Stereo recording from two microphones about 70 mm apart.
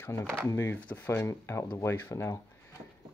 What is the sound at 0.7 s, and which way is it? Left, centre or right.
Speech, left.